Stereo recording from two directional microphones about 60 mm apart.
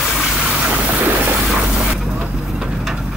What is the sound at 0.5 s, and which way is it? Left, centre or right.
Boat, right.